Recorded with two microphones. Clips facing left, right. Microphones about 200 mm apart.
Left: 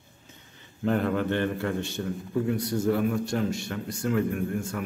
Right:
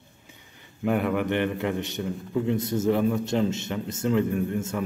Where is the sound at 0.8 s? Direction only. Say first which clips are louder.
Right 1 dB; 10° right (ahead or behind).